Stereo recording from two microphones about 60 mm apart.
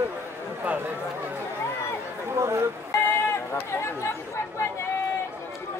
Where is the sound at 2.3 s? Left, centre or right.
Right.